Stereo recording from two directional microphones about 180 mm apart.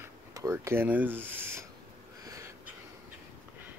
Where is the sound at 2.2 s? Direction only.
20° right (ahead or behind).